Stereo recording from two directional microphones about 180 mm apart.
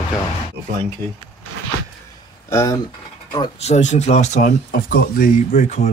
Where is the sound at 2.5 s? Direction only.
20° left (ahead or behind).